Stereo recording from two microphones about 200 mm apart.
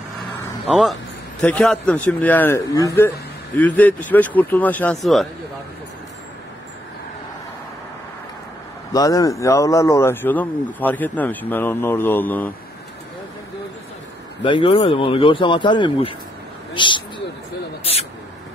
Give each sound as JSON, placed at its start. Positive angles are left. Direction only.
{"t": 0.7, "sound": "speech", "side_deg": 0}
{"t": 8.9, "sound": "speech", "side_deg": 15}
{"t": 14.4, "sound": "speech", "side_deg": 25}